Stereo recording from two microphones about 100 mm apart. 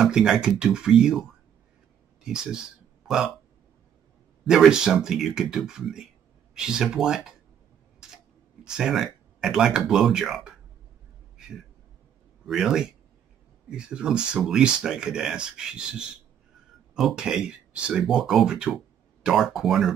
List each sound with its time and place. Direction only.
0.0 s speech: 5° right (ahead or behind)
2.2 s speech: 5° right (ahead or behind)
4.5 s speech: 5° right (ahead or behind)
8.0 s a sound: 5° right (ahead or behind)
8.6 s speech: 5° right (ahead or behind)
12.4 s speech: 5° right (ahead or behind)